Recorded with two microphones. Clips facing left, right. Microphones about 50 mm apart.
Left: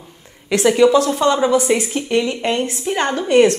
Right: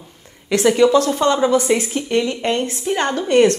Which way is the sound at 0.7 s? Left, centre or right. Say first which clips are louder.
Left 1 dB; centre.